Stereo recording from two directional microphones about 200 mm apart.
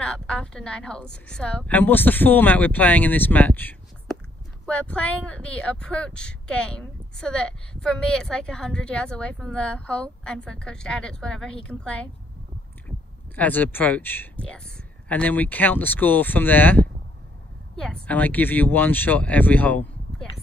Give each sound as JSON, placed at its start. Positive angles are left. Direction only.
{"t": 0.0, "sound": "a woman's voice", "side_deg": 5}
{"t": 13.4, "sound": "a woman's voice", "side_deg": 10}
{"t": 18.0, "sound": "a woman's voice", "side_deg": 10}